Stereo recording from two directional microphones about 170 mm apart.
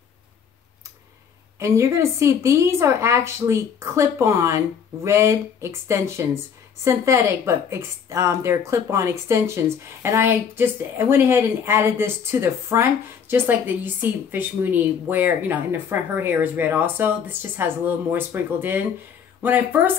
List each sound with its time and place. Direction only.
1.6 s a woman's voice: 15° right (ahead or behind)